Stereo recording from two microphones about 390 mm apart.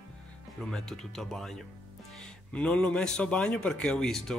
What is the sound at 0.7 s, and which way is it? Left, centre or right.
Speech, centre.